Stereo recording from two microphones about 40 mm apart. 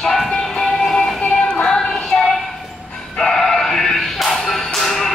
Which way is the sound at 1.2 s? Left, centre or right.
Left.